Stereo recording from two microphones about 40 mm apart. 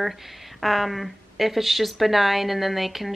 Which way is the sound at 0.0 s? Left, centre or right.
Centre.